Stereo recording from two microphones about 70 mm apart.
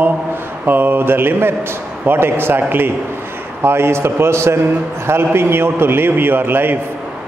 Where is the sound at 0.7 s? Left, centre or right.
Right.